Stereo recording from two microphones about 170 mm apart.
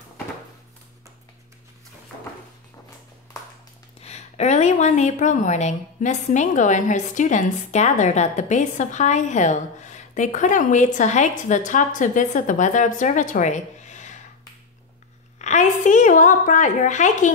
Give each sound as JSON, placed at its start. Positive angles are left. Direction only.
{"t": 4.0, "sound": "a woman's voice", "side_deg": 40}
{"t": 15.3, "sound": "a woman's voice", "side_deg": 45}